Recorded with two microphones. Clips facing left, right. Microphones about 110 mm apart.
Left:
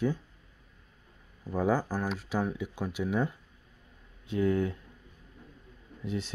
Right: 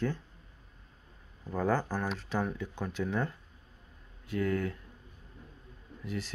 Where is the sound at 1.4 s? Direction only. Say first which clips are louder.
Left 2 dB; 10° left (ahead or behind).